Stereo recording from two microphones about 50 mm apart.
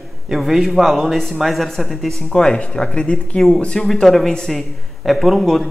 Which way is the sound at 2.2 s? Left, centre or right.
Centre.